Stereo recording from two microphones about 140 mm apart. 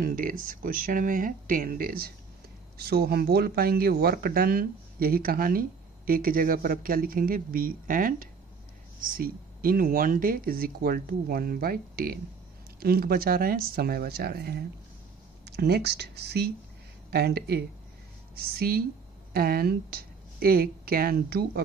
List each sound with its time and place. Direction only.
0.0 s speech: 85° right
18.3 s a woman's voice: 90° right